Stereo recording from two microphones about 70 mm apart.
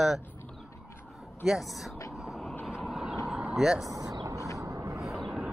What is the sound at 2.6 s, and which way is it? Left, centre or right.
Train, centre.